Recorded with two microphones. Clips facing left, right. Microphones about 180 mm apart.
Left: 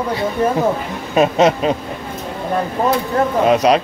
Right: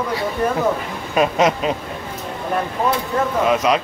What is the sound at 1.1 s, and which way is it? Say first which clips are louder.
Speech: left 3 dB; 25° left (ahead or behind).